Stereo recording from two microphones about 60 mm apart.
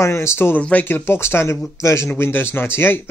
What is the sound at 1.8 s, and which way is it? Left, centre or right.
Speech, left.